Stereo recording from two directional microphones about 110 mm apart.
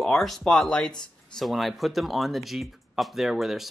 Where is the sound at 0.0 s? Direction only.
5° left (ahead or behind).